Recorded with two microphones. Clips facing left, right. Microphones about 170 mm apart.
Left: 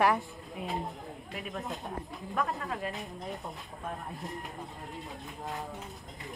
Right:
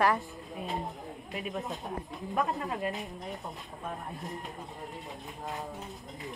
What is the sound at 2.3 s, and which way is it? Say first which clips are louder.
Speech: right 2 dB; 20° right (ahead or behind).